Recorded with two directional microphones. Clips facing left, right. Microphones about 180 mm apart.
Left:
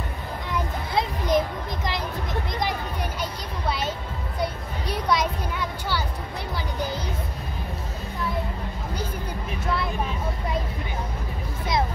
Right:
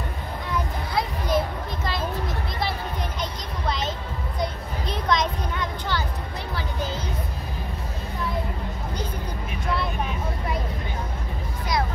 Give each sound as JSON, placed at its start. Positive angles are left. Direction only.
{"t": 0.9, "sound": "music", "side_deg": 20}
{"t": 3.2, "sound": "a sound", "side_deg": 10}
{"t": 6.5, "sound": "music", "side_deg": 15}